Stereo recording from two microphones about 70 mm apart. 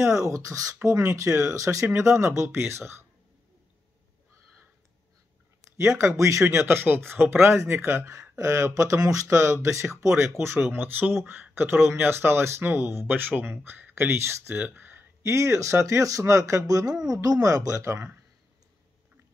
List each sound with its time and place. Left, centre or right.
0.0 s speech: right
5.8 s speech: right
8.0 s speech: right
10.6 s speech: right
15.2 s speech: right